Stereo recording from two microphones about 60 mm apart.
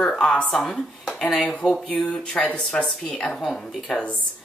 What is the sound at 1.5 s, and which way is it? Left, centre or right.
Speech, centre.